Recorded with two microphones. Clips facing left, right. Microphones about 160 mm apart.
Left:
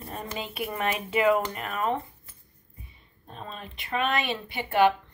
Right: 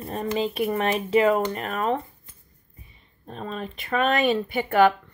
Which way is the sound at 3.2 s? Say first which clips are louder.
Right 8 dB; 45° right (ahead or behind).